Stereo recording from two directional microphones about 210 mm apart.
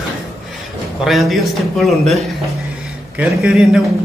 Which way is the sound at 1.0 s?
Centre (ahead or behind).